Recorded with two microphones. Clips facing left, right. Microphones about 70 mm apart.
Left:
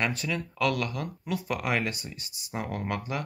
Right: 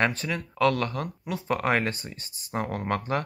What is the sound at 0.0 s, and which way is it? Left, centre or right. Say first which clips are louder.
Speech: right 3 dB; right.